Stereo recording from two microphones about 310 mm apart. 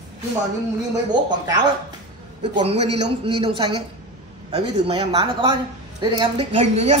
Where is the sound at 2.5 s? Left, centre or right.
Centre.